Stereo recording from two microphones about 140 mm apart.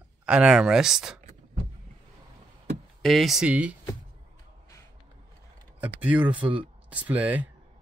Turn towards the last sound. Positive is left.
turn(degrees=-10)  # may be behind; listen again after turning